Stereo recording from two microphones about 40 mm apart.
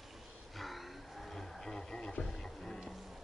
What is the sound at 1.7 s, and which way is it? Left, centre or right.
Radio, centre.